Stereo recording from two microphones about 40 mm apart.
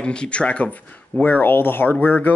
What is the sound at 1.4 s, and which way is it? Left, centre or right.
Speech, left.